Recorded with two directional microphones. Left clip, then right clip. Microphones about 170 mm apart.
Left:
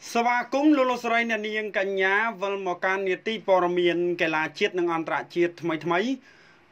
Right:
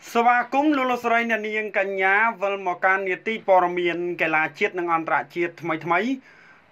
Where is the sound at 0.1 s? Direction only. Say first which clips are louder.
Right 5 dB; 30° left (ahead or behind).